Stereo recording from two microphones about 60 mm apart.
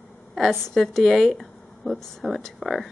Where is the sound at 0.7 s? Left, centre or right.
Centre.